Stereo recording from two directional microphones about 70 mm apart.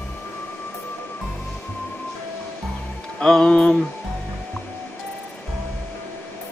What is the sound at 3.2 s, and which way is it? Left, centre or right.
Music, centre.